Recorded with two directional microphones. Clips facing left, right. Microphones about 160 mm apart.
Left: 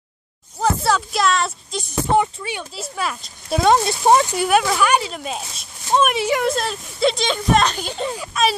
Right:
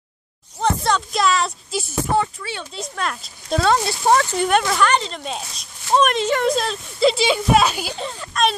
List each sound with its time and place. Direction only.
0.6 s speech: 5° left (ahead or behind)
2.0 s speech: 15° left (ahead or behind)
2.7 s speech: 5° left (ahead or behind)
3.5 s speech: 15° left (ahead or behind)
4.4 s speech: 5° left (ahead or behind)